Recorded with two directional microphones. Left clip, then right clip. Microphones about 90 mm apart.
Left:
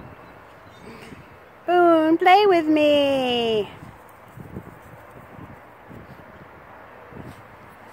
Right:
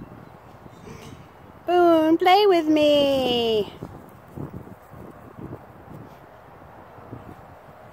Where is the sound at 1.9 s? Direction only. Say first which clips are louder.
Even; 25° right (ahead or behind).